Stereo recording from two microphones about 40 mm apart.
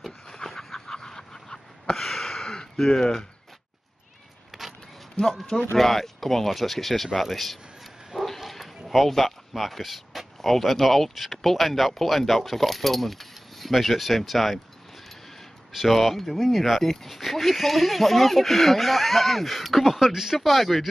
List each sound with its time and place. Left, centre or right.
0.0 s a sound: centre
2.8 s speech: centre
4.5 s vehicle: centre
5.2 s speech: centre
15.7 s speech: centre
16.6 s speech: centre